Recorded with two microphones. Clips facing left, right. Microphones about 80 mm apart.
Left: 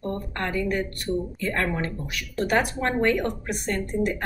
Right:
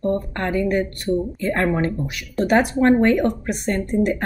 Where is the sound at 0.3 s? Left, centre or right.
Right.